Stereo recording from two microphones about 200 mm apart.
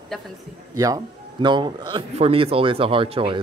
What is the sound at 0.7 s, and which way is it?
Speech, 15° right (ahead or behind).